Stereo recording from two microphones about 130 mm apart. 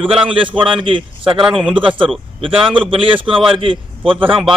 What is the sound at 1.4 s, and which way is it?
Speech, 5° right (ahead or behind).